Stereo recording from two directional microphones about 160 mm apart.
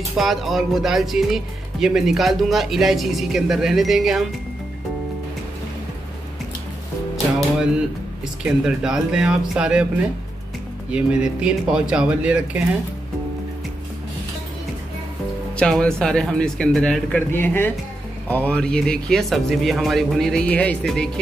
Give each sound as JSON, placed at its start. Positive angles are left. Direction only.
{"t": 0.2, "sound": "speech", "side_deg": 0}
{"t": 7.3, "sound": "music", "side_deg": 0}
{"t": 8.6, "sound": "speech", "side_deg": -5}
{"t": 10.9, "sound": "speech", "side_deg": -5}
{"t": 15.5, "sound": "speech", "side_deg": 5}